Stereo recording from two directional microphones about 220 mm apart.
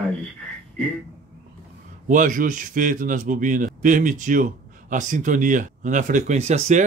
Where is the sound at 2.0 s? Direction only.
35° right (ahead or behind).